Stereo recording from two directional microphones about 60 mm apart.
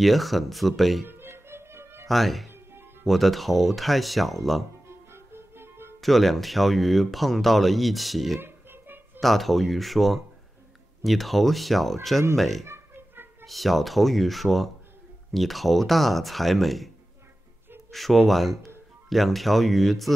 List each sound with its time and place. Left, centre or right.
0.0 s speech: centre
1.0 s music: right
2.0 s speech: centre
2.5 s music: right
3.1 s speech: centre
5.1 s music: right
5.9 s speech: centre
8.4 s a sound: right
9.2 s speech: centre
12.6 s a sound: right
13.5 s speech: centre
17.9 s speech: centre